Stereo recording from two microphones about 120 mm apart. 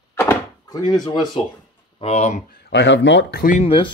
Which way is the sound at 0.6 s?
35° left (ahead or behind).